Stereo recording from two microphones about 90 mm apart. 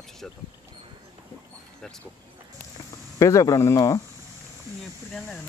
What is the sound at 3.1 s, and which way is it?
Speech, 35° left (ahead or behind).